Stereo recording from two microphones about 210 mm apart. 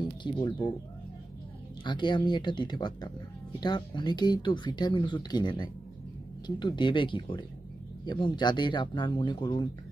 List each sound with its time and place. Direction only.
0.0 s speech: 20° left (ahead or behind)
1.9 s speech: 20° left (ahead or behind)